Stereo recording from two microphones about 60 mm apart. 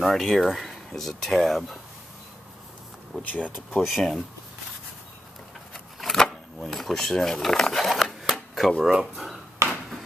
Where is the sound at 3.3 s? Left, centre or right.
Left.